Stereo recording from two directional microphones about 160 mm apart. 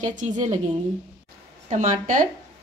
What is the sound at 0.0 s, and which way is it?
Speech, 50° right (ahead or behind).